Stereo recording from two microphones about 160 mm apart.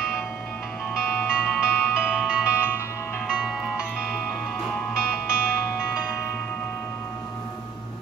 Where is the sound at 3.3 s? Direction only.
5° right (ahead or behind).